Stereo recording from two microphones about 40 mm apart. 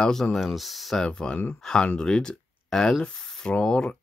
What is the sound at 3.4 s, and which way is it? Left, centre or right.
Speech, left.